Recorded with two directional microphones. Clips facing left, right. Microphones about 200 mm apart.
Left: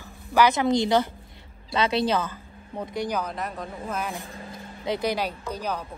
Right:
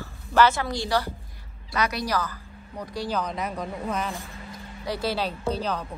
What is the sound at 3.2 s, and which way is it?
Speech, centre (ahead or behind).